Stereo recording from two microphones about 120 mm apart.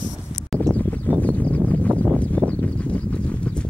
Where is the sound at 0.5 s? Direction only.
Centre (ahead or behind).